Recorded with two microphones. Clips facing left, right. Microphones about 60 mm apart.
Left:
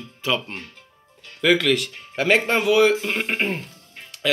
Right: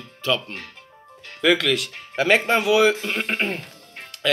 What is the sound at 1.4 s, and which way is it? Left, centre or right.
Speech, centre.